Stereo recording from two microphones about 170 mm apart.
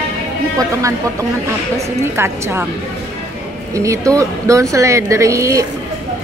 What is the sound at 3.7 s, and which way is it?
A woman's voice, 20° right (ahead or behind).